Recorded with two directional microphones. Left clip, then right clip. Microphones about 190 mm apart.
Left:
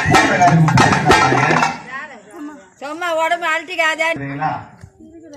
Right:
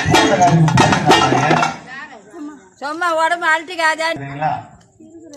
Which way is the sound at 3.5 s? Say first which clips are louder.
Right 3 dB; centre (ahead or behind).